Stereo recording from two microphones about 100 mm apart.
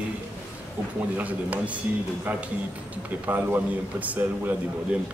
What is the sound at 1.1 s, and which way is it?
Speech, 15° right (ahead or behind).